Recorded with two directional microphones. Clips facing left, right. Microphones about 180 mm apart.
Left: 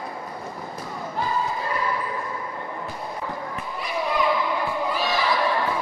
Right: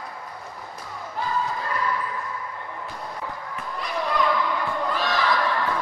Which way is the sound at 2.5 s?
30° left (ahead or behind).